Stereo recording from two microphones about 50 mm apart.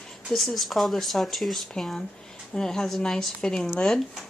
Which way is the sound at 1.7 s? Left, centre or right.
Centre.